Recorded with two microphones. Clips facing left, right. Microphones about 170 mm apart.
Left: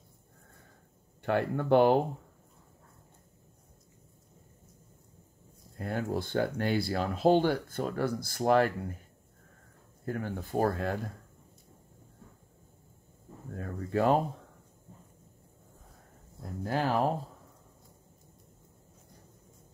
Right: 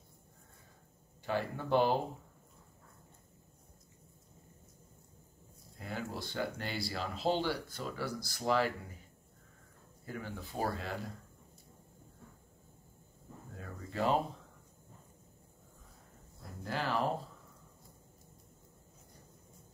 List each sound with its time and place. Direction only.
1.2 s speech: 60° left (ahead or behind)
5.8 s speech: 55° left (ahead or behind)
10.0 s speech: 55° left (ahead or behind)
13.5 s speech: 55° left (ahead or behind)
16.6 s speech: 50° left (ahead or behind)